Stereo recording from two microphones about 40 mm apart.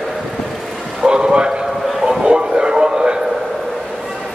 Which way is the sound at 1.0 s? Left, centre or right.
Right.